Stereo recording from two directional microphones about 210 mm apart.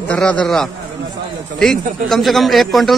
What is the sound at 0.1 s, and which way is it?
Speech, 5° left (ahead or behind).